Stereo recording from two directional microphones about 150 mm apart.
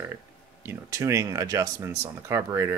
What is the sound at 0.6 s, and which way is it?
Speech, 20° right (ahead or behind).